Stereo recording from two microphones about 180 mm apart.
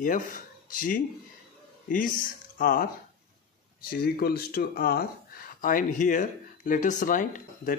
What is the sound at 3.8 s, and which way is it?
Speech, 55° left (ahead or behind).